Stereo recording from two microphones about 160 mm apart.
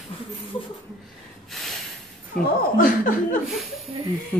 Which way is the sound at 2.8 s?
60° left (ahead or behind).